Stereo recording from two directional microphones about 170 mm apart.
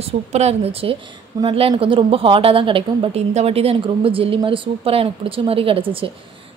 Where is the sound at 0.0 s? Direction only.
40° right (ahead or behind).